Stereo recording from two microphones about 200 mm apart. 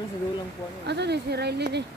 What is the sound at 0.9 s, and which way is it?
Speech, 55° right (ahead or behind).